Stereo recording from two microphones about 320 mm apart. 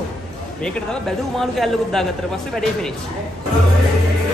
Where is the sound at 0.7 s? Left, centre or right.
Centre.